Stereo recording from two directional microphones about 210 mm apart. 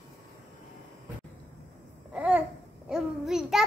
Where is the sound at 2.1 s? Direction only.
5° right (ahead or behind).